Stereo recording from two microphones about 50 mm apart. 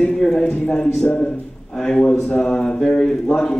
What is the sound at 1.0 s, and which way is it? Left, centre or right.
Speech, left.